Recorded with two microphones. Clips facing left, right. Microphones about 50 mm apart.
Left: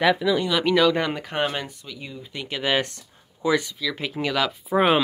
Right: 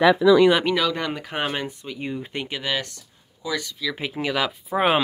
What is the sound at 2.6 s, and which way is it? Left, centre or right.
Speech, left.